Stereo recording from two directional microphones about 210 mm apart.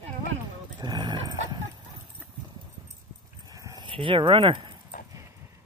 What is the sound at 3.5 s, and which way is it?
Dog, 15° right (ahead or behind).